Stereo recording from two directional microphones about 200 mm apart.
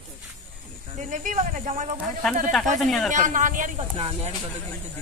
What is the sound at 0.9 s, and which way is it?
Speech, 40° right (ahead or behind).